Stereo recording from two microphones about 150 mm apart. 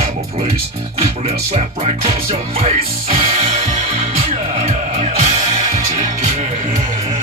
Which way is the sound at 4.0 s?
45° right (ahead or behind).